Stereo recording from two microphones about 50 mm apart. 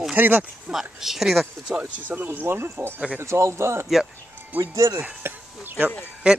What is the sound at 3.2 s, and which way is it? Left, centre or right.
Speech, right.